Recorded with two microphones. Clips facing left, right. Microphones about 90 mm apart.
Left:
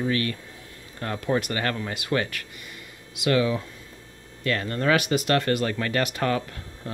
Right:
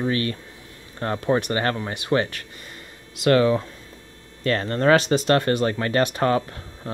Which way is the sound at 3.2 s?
45° right (ahead or behind).